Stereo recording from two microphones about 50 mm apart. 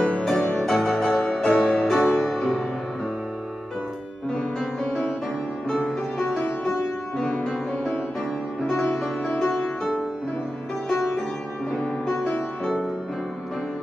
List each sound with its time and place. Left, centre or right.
0.0 s music: centre
0.7 s music: centre
1.2 s music: centre
1.5 s music: centre
5.7 s music: centre
7.2 s music: centre
9.4 s music: centre